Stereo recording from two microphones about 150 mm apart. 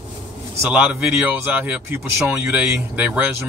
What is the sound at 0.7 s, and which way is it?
Speech, 10° right (ahead or behind).